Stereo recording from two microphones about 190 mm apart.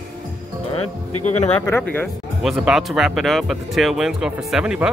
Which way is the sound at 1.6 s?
10° left (ahead or behind).